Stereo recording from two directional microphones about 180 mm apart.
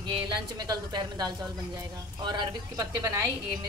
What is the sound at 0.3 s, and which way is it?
A woman's voice, 25° right (ahead or behind).